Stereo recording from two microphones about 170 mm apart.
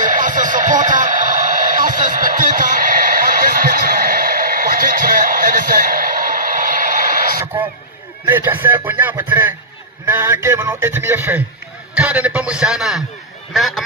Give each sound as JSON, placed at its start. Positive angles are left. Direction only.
{"t": 0.0, "sound": "radio", "side_deg": -50}
{"t": 8.3, "sound": "a man's voice", "side_deg": -10}